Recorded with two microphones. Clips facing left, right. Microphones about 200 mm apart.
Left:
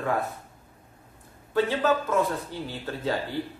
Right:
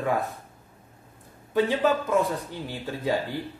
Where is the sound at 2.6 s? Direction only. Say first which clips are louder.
Right 1 dB; 15° right (ahead or behind).